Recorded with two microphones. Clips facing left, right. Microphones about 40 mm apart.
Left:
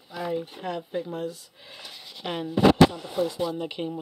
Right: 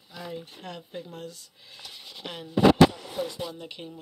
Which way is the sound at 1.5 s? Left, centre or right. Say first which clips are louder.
Left 2 dB; left.